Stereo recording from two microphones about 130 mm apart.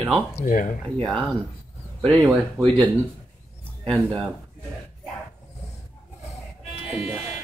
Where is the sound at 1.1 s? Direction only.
5° left (ahead or behind).